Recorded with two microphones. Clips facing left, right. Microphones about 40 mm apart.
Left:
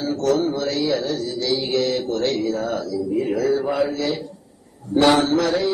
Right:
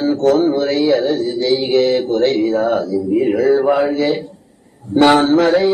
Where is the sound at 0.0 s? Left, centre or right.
Right.